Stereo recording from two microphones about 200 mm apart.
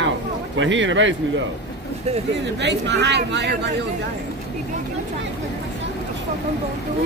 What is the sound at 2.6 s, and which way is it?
Speech, 60° right (ahead or behind).